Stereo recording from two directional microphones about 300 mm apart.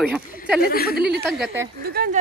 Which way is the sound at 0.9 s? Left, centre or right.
Right.